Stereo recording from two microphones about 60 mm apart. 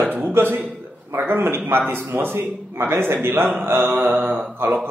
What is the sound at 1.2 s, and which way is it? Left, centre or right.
A man's voice, right.